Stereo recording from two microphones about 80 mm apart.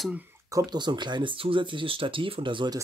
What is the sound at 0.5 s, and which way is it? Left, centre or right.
Speech, right.